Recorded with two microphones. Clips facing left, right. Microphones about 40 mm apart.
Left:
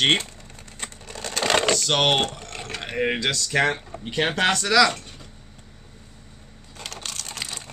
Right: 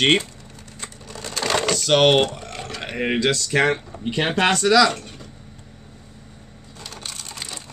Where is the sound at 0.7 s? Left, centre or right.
Left.